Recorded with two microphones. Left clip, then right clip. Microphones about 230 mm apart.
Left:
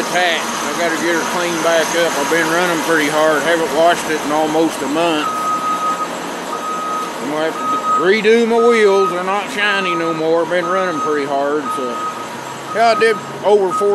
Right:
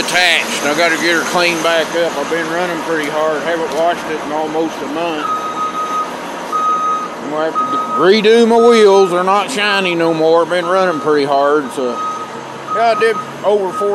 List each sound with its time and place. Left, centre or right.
0.1 s speech: right
2.3 s speech: centre
8.0 s speech: right
12.7 s speech: centre